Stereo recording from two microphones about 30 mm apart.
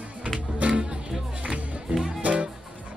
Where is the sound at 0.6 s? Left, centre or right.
Right.